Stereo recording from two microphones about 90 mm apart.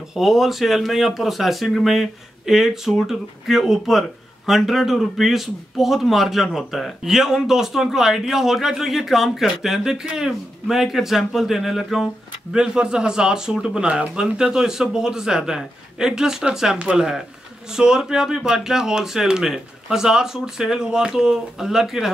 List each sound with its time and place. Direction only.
0.1 s speech: 5° right (ahead or behind)